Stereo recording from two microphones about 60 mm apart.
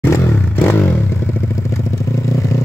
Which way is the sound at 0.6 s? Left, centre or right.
Left.